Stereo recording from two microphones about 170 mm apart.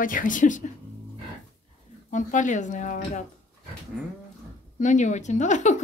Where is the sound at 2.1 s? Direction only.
50° left (ahead or behind).